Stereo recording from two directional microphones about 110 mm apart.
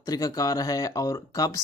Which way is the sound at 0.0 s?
35° left (ahead or behind).